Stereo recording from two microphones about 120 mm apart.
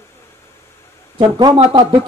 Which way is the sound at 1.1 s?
45° right (ahead or behind).